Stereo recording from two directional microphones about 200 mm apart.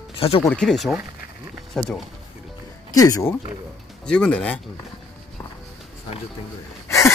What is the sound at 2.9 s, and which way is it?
Speech, 15° left (ahead or behind).